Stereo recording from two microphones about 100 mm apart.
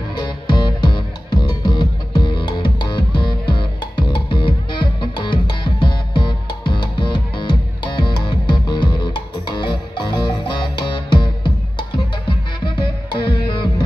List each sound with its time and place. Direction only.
0.1 s music: 45° left (ahead or behind)